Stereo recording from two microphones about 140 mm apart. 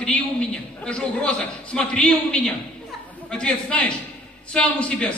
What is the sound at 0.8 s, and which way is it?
A man's voice, 5° left (ahead or behind).